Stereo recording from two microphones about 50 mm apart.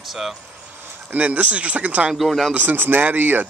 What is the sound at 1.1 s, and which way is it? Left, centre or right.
Speech, right.